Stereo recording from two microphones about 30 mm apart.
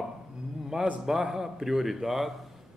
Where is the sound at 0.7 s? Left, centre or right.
Centre.